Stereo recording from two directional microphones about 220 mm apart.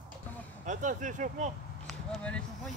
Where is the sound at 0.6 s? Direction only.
35° right (ahead or behind).